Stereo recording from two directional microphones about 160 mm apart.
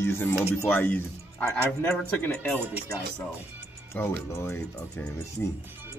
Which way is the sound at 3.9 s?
15° left (ahead or behind).